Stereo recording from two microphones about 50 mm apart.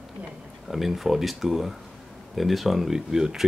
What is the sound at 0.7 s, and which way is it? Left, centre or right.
Speech, centre.